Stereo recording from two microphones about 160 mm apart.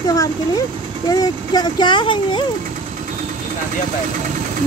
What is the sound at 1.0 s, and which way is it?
Speech, 25° left (ahead or behind).